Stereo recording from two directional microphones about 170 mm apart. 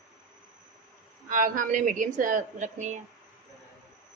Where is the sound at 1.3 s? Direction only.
50° right (ahead or behind).